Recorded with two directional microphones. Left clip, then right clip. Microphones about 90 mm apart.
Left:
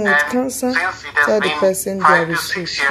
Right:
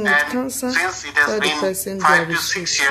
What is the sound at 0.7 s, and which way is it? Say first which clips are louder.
Speech: right 1 dB; 30° right (ahead or behind).